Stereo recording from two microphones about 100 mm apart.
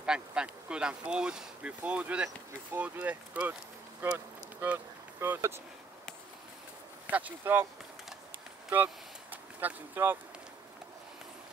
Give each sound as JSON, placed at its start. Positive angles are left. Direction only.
{"t": 0.0, "sound": "speech", "side_deg": -10}
{"t": 7.1, "sound": "speech", "side_deg": -15}
{"t": 8.6, "sound": "vehicle", "side_deg": -15}